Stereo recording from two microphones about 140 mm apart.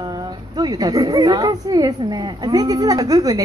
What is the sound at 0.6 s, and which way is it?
Speech, 30° right (ahead or behind).